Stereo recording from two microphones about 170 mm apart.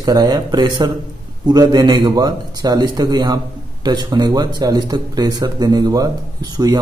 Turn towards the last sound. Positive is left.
turn(degrees=-25)  # may be behind; listen again after turning